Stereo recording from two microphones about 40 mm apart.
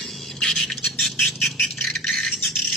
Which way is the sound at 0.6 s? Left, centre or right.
Centre.